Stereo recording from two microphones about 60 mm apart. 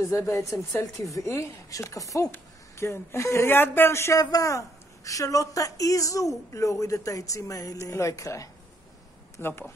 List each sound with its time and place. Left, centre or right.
0.0 s speech: left
1.8 s speech: left
2.3 s speech: left
4.2 s a woman's voice: left
7.8 s speech: left
9.4 s speech: left